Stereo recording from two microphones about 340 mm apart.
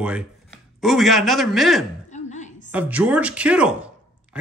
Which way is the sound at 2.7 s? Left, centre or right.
Centre.